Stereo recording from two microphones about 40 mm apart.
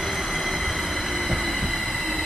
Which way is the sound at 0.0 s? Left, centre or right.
Centre.